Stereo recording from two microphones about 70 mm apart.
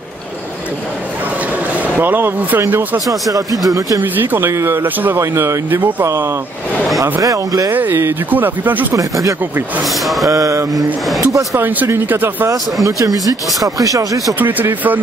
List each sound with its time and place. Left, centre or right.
2.0 s speech: right
3.1 s speech: right
4.0 s speech: right
7.0 s speech: right
7.7 s speech: right
8.9 s a sound: right
11.5 s speech: right
12.8 s speech: right
14.4 s speech: right